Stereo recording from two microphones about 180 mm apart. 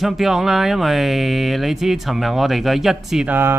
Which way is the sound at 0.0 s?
Centre (ahead or behind).